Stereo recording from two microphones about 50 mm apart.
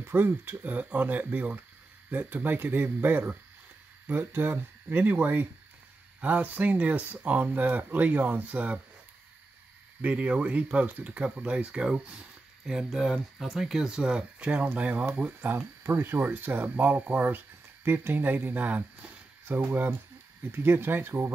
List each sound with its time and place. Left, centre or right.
0.0 s speech: right
0.7 s speech: right
10.0 s speech: right
12.6 s speech: centre
14.8 s speech: right
15.5 s speech: right
19.4 s speech: right
20.4 s speech: right